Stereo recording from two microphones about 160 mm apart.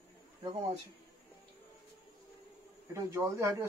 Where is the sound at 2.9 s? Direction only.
20° right (ahead or behind).